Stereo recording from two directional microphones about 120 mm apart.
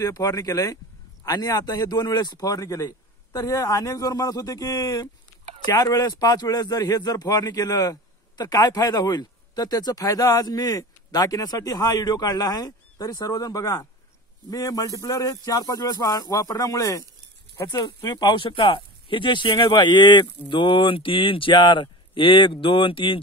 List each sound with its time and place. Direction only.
0.0 s speech: 30° left (ahead or behind)
5.4 s a sound: 55° right (ahead or behind)
5.8 s speech: 30° left (ahead or behind); by 23.1 s 45° left (ahead or behind)